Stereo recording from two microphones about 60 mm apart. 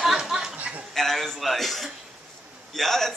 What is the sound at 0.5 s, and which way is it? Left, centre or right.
Speech, right.